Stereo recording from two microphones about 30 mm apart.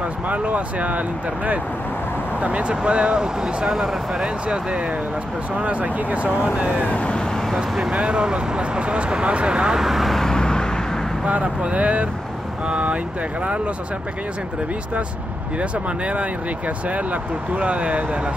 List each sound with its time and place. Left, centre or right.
0.3 s speech: right
2.4 s speech: right
3.2 s speech: right
3.7 s speech: centre
4.2 s speech: right
5.6 s speech: right
7.5 s speech: centre
7.9 s speech: right
9.8 s speech: centre
10.2 s vehicle: left
11.2 s speech: right
16.1 s speech: right